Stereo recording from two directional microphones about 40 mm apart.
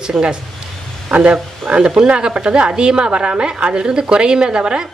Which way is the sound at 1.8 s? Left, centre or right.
Right.